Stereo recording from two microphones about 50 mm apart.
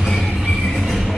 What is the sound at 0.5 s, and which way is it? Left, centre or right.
Train, centre.